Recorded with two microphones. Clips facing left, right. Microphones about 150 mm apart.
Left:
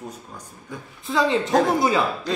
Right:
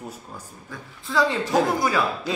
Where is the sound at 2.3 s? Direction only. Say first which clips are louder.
Left 1 dB; 5° right (ahead or behind).